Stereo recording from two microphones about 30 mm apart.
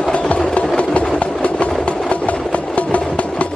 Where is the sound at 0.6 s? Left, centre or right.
Left.